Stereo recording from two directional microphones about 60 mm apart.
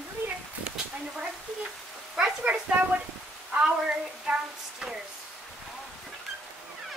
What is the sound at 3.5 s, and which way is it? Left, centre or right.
Frying, centre.